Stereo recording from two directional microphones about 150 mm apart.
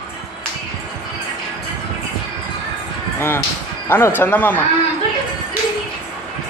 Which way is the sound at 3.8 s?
15° left (ahead or behind).